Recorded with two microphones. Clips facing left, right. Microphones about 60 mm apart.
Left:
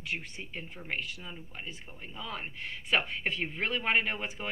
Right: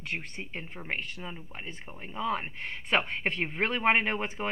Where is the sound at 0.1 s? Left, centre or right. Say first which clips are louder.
Right 1 dB; right.